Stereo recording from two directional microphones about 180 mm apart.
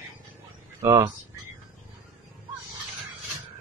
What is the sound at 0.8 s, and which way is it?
Speech, 15° right (ahead or behind).